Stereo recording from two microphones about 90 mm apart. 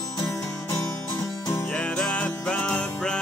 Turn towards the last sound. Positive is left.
turn(degrees=10)  # may be behind; listen again after turning